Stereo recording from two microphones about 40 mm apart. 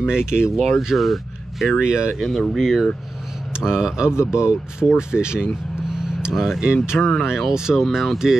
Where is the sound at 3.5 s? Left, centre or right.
Centre.